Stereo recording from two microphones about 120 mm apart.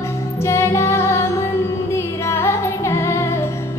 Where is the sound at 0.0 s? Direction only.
25° left (ahead or behind).